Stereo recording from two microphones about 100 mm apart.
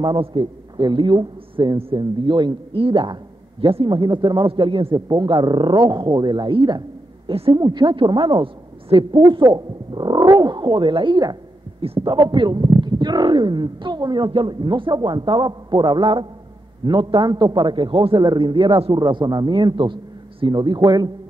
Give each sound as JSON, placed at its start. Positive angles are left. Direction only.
{"t": 0.0, "sound": "speech", "side_deg": -55}
{"t": 1.8, "sound": "speech", "side_deg": -60}
{"t": 2.8, "sound": "speech", "side_deg": -60}
{"t": 4.9, "sound": "speech", "side_deg": -45}
{"t": 7.2, "sound": "a woman's voice", "side_deg": -65}
{"t": 7.5, "sound": "a woman's voice", "side_deg": -45}
{"t": 18.9, "sound": "speech", "side_deg": -45}